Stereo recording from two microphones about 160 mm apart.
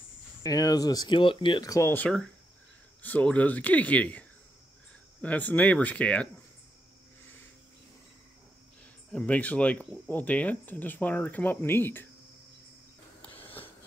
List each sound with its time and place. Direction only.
0.4 s speech: 25° left (ahead or behind); by 6.2 s 10° left (ahead or behind)
9.1 s speech: 10° left (ahead or behind)
13.2 s a sound: 10° left (ahead or behind)